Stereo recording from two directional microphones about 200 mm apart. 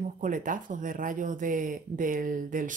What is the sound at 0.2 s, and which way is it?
Speech, 40° right (ahead or behind).